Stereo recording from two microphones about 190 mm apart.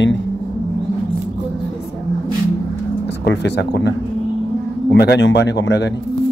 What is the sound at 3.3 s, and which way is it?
Speech, 65° left (ahead or behind).